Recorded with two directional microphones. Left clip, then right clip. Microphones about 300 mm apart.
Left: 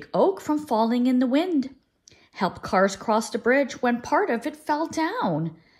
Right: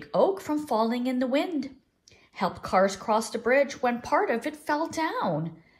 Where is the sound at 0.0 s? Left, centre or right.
Left.